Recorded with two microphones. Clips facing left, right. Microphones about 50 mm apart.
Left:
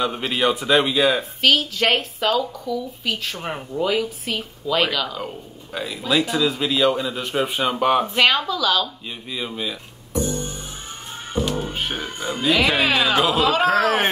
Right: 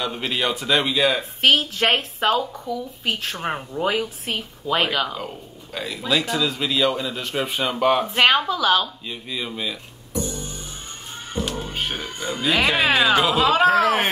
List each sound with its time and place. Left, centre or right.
0.4 s speech: centre
1.4 s speech: right
3.4 s speech: centre
3.8 s speech: right
5.2 s a man's voice: centre
8.1 s speech: right
9.3 s a man's voice: centre
10.1 s music: left
11.6 s speech: centre
12.0 s speech: left
12.4 s a man's voice: centre
13.4 s speech: right